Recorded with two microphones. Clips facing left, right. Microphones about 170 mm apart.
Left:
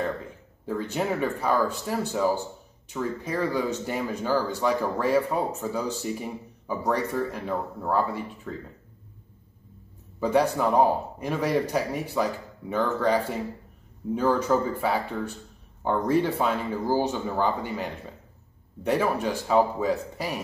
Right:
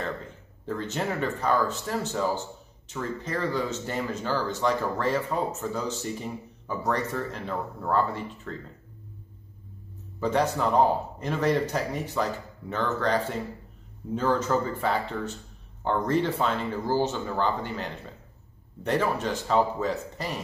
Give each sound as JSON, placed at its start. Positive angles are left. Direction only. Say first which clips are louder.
{"t": 0.7, "sound": "speech", "louder": "left 2 dB", "side_deg": 10}
{"t": 10.2, "sound": "speech", "louder": "left 2 dB", "side_deg": 10}
{"t": 14.8, "sound": "speech", "louder": "left 1 dB", "side_deg": 10}